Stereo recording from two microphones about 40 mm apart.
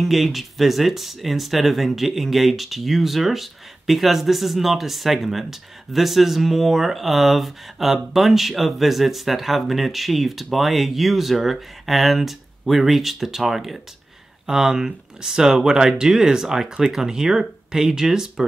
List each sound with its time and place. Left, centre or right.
0.0 s speech: centre
14.4 s speech: centre